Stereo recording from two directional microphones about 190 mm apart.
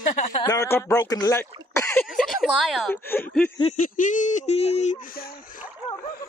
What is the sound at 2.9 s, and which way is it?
Speech, 10° left (ahead or behind).